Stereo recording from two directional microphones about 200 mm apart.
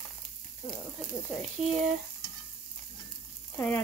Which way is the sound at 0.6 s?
Centre (ahead or behind).